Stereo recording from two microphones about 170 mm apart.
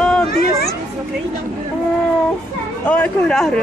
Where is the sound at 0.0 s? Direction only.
5° left (ahead or behind).